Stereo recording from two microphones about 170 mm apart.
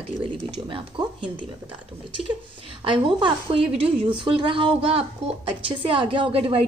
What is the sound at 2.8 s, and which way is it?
A woman's voice, 30° right (ahead or behind).